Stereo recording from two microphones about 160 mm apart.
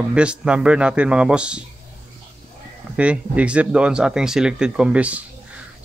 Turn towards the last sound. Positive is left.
turn(degrees=-10)  # may be behind; listen again after turning